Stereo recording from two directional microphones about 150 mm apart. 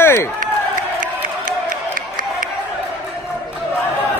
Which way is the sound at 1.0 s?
65° right (ahead or behind).